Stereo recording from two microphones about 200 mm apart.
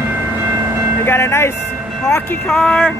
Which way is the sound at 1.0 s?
10° left (ahead or behind).